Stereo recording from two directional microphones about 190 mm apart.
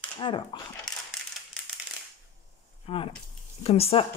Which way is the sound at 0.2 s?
25° left (ahead or behind).